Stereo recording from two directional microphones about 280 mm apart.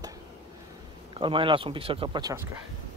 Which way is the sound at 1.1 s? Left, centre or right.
Centre.